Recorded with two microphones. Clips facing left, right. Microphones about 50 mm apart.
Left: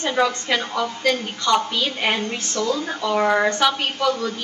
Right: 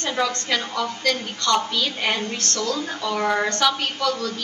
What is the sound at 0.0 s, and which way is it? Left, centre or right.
A woman's voice, centre.